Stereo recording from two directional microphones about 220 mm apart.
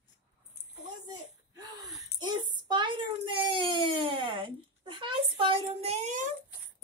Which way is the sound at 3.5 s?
20° right (ahead or behind).